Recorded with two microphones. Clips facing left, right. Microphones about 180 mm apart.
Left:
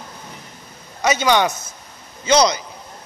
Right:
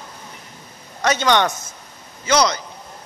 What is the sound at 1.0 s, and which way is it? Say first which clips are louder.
Speech: left 1 dB; 10° left (ahead or behind).